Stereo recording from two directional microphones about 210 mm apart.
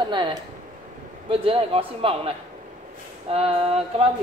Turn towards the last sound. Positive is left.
turn(degrees=-25)  # may be behind; listen again after turning